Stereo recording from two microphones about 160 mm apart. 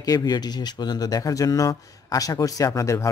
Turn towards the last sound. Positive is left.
turn(degrees=20)  # may be behind; listen again after turning